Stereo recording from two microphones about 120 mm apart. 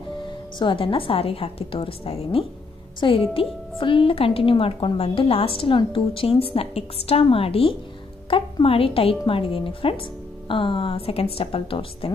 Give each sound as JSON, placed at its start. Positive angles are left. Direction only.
{"t": 0.6, "sound": "a woman's voice", "side_deg": 45}